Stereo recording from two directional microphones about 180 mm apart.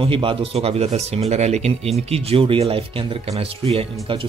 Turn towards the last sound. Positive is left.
turn(degrees=-30)  # may be behind; listen again after turning